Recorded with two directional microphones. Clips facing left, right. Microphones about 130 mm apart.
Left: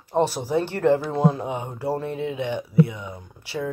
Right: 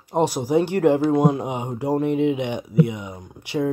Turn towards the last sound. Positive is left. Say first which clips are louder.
# right 6 dB
turn(degrees=-15)  # may be behind; listen again after turning